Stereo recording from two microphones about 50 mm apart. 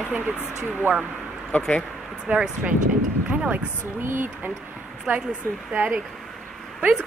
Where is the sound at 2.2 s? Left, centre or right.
Right.